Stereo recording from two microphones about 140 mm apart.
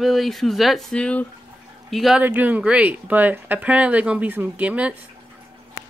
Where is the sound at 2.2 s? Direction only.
10° right (ahead or behind).